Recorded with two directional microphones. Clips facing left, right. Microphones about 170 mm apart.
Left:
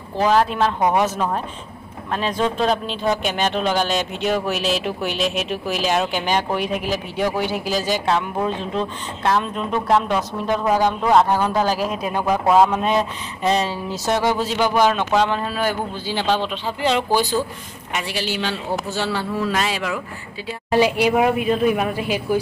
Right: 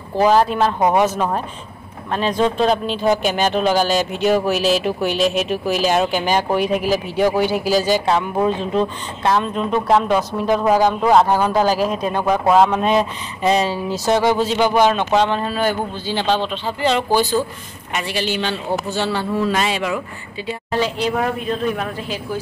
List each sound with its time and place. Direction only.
0.2 s speech: 5° right (ahead or behind)
14.6 s a man's voice: 25° right (ahead or behind)
15.2 s speech: 5° left (ahead or behind)
20.4 s speech: 10° left (ahead or behind)